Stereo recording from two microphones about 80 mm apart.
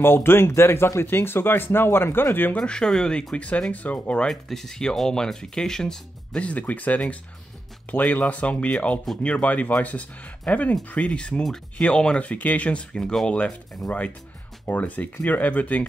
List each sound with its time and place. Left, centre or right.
0.0 s speech: left
2.5 s speech: centre
4.3 s speech: centre
12.9 s speech: centre
14.7 s speech: centre